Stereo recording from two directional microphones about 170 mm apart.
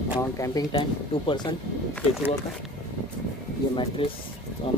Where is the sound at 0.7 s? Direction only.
30° left (ahead or behind).